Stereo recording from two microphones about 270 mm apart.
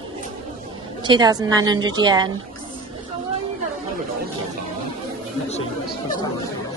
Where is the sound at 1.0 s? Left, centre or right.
Centre.